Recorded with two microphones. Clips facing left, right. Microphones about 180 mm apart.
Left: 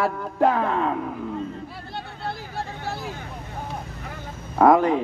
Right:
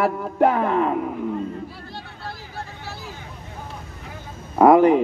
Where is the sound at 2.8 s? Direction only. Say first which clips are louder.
Left 5 dB; 55° left (ahead or behind).